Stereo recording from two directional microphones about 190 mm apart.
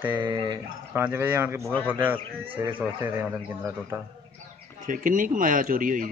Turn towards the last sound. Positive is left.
turn(degrees=-45)  # may be behind; listen again after turning